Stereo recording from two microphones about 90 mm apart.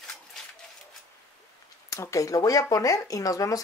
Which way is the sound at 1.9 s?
35° left (ahead or behind).